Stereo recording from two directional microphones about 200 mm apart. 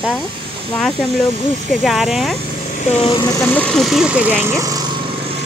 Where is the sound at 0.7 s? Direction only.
5° left (ahead or behind).